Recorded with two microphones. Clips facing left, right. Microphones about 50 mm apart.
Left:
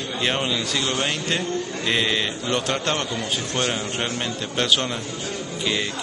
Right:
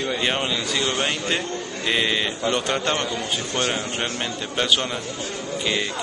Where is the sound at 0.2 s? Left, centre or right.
Centre.